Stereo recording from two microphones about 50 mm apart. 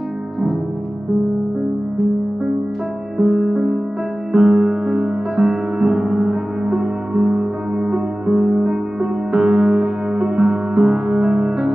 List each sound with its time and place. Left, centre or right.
3.2 s music: centre